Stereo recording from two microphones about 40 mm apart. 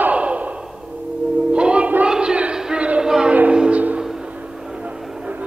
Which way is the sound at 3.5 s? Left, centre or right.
Right.